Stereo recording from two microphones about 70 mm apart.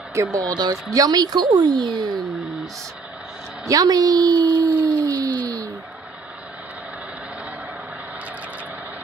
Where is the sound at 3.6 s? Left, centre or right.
Right.